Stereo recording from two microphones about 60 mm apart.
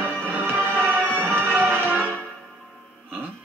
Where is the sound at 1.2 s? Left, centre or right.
Right.